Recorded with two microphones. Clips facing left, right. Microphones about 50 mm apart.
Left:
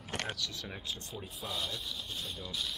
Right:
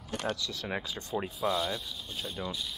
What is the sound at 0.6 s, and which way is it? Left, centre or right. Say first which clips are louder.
Speech: right 9 dB; right.